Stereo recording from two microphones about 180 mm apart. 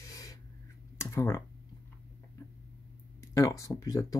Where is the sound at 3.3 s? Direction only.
15° left (ahead or behind).